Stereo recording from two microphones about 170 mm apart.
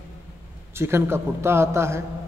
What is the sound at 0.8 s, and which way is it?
A man's voice, 15° right (ahead or behind).